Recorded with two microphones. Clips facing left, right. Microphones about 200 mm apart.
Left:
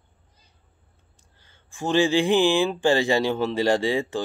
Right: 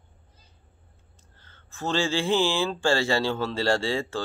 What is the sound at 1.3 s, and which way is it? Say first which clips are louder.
Speech: left 3 dB; 15° left (ahead or behind).